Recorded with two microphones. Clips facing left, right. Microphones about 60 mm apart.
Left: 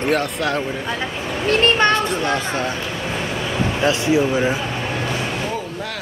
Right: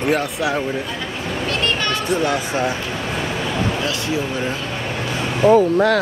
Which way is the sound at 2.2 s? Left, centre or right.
Centre.